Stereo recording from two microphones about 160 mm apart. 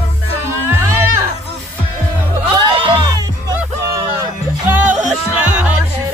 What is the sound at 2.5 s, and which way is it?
Music, 30° right (ahead or behind).